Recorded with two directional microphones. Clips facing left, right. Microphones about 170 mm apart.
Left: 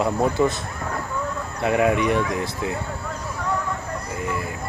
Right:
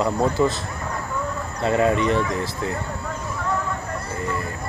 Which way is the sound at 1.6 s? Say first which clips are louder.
Even; 10° left (ahead or behind).